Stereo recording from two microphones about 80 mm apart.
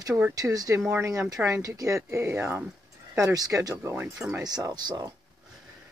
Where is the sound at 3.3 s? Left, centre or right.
Right.